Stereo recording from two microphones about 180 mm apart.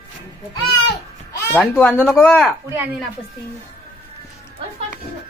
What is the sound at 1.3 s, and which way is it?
Speech, 15° left (ahead or behind).